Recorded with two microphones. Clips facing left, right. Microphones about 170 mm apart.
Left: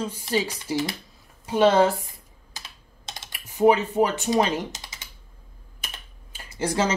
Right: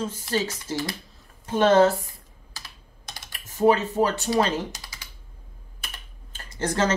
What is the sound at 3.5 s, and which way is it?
Speech, 15° left (ahead or behind).